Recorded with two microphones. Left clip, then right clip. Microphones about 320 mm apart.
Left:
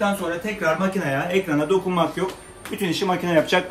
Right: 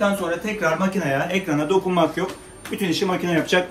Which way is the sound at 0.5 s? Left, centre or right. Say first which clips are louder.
Left 1 dB; centre.